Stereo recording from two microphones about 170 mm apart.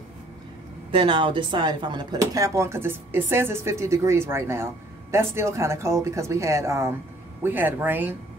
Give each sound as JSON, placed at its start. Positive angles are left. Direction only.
{"t": 0.9, "sound": "speech", "side_deg": -30}